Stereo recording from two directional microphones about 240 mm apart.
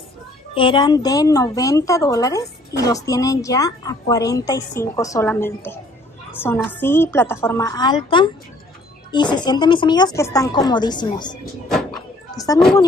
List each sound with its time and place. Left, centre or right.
0.6 s a woman's voice: centre